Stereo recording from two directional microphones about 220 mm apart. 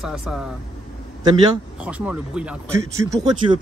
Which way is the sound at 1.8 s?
5° right (ahead or behind).